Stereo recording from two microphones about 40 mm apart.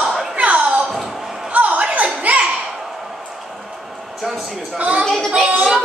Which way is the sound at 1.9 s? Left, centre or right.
Right.